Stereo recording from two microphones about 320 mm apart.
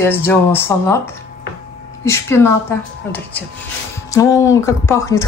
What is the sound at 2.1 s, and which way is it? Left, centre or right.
Speech, centre.